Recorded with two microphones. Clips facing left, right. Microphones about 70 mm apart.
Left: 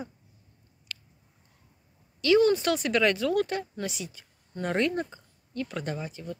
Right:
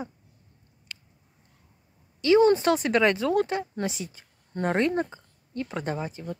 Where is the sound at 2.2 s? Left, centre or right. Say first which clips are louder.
Right 3 dB; right.